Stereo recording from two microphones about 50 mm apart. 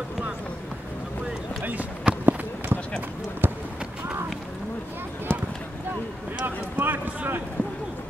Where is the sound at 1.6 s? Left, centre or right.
Right.